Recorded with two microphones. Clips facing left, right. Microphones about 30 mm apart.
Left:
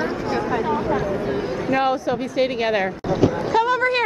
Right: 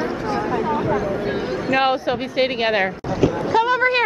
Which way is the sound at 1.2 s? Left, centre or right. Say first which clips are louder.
Right 1 dB; right.